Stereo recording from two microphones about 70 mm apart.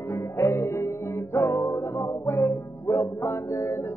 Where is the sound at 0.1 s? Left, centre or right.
Left.